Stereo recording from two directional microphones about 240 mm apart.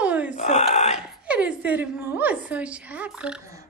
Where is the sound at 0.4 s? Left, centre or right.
Left.